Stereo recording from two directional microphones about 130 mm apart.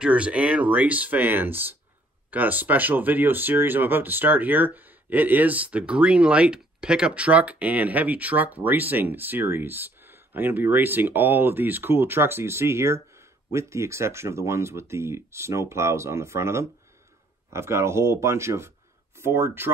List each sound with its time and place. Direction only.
0.0 s speech: 10° right (ahead or behind)